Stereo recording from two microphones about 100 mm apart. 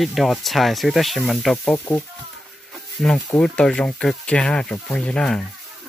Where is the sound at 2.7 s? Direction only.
Centre (ahead or behind).